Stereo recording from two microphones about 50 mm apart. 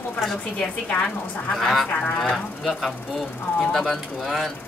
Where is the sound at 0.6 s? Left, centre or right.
Centre.